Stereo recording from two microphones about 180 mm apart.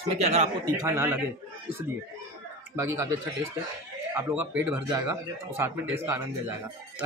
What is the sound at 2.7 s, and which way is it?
Speech, 15° right (ahead or behind).